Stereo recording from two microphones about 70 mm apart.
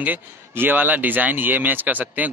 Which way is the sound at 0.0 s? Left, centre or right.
Right.